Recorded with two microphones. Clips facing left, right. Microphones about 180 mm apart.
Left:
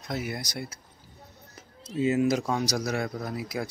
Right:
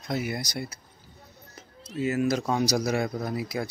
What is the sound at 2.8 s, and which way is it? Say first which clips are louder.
Speech: right 3 dB; 5° right (ahead or behind).